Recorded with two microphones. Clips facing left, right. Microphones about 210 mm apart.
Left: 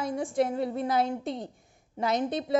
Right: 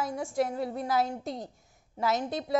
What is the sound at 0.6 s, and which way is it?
A woman's voice, centre (ahead or behind).